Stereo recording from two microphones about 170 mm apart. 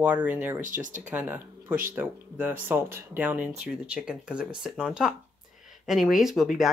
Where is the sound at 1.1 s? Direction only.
10° right (ahead or behind).